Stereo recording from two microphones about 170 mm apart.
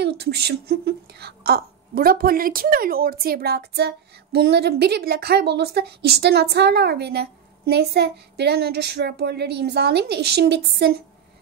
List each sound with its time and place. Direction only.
0.0 s a woman's voice: 75° right (ahead or behind)